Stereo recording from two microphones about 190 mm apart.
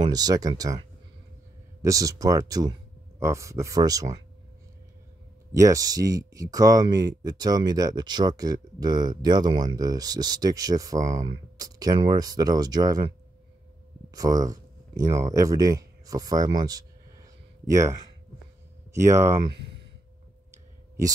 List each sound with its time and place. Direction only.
0.0 s speech: 20° right (ahead or behind)
5.5 s speech: 15° right (ahead or behind)
14.1 s speech: 20° right (ahead or behind)
19.0 s speech: 15° right (ahead or behind)
20.5 s clicking: 15° right (ahead or behind)